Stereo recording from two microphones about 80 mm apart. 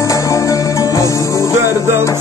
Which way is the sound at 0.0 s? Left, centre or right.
Left.